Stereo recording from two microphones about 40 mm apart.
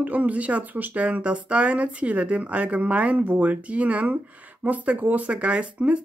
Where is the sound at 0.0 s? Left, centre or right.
Right.